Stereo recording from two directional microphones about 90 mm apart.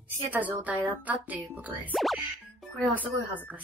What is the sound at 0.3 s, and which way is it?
A woman's voice, 20° right (ahead or behind).